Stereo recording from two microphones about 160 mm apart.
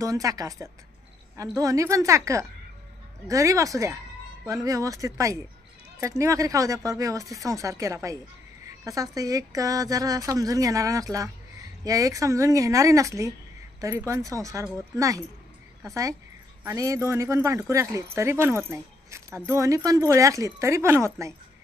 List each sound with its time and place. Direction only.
0.0 s speech: 20° right (ahead or behind)